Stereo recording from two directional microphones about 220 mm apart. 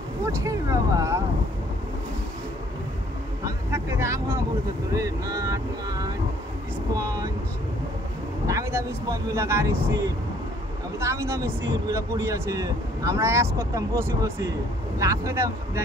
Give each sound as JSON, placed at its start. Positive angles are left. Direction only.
{"t": 0.2, "sound": "speech", "side_deg": -15}
{"t": 3.4, "sound": "speech", "side_deg": -10}
{"t": 8.5, "sound": "speech", "side_deg": -15}